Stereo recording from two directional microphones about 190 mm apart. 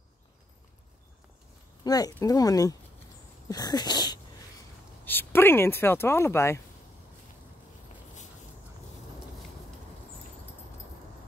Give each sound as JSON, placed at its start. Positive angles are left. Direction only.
{"t": 1.9, "sound": "speech", "side_deg": 20}
{"t": 3.4, "sound": "dog", "side_deg": 20}
{"t": 5.0, "sound": "speech", "side_deg": 10}